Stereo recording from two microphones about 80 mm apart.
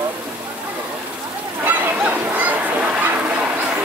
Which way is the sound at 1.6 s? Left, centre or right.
Centre.